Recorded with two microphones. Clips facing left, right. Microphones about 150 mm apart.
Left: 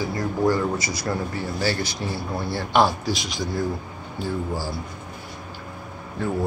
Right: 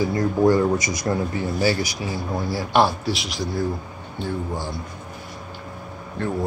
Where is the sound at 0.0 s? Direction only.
20° right (ahead or behind); by 4.7 s 5° left (ahead or behind).